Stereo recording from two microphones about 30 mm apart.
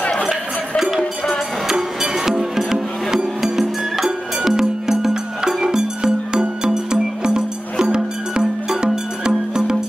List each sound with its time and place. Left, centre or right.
0.7 s music: centre